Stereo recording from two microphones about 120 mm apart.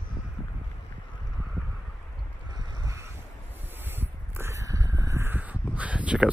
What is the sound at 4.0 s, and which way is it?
Crow, 20° right (ahead or behind).